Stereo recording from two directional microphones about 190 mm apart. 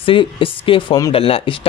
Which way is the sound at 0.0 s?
30° left (ahead or behind).